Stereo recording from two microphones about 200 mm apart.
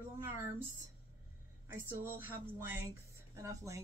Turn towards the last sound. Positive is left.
turn(degrees=-15)  # may be behind; listen again after turning